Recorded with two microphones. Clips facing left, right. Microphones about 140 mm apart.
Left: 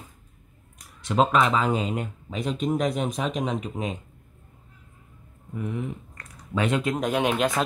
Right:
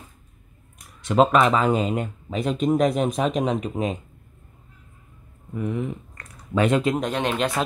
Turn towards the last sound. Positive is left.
turn(degrees=0)  # may be behind; listen again after turning